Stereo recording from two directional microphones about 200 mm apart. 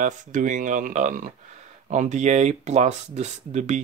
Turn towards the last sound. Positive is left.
turn(degrees=-35)  # may be behind; listen again after turning